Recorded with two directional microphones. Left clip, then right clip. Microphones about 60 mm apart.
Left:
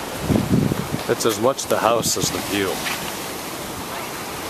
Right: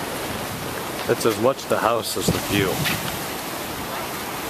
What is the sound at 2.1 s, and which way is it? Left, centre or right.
Speech, centre.